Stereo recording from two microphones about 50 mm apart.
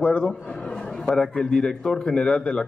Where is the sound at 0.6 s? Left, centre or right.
Centre.